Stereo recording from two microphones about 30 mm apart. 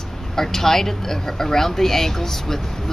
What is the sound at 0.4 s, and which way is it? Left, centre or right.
Speech, centre.